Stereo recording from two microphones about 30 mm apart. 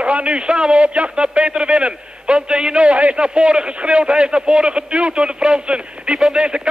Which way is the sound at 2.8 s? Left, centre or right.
Right.